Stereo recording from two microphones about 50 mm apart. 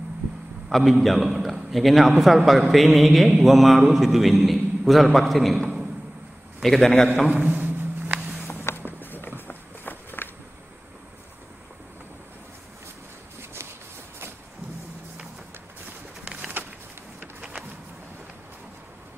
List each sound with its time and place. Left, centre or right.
0.7 s a man's voice: centre
6.6 s a man's voice: centre
7.2 s a sound: right
8.7 s walk: left
9.0 s a sound: left
9.5 s walk: left
16.3 s pigeon: right
17.2 s printer: right